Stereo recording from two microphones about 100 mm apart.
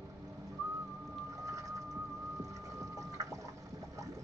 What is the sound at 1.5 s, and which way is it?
Vehicle, 35° right (ahead or behind).